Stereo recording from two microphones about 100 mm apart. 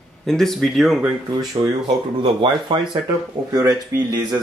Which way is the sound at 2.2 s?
55° right (ahead or behind).